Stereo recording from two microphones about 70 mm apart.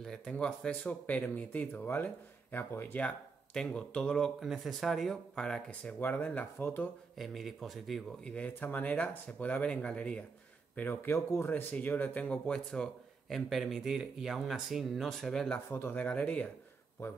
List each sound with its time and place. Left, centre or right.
0.0 s speech: centre; by 3.0 s left
3.5 s speech: centre
4.4 s speech: centre
5.7 s speech: left
7.2 s speech: centre
8.2 s speech: centre
8.5 s speech: left
10.8 s speech: left
11.4 s speech: left; by 15.4 s centre
15.7 s speech: left
16.0 s speech: centre